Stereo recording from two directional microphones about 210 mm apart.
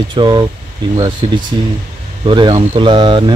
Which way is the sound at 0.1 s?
20° right (ahead or behind).